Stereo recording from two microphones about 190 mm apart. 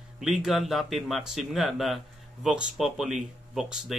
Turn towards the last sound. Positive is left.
turn(degrees=0)  # may be behind; listen again after turning